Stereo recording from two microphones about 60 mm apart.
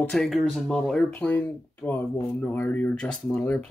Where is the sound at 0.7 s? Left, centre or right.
Centre.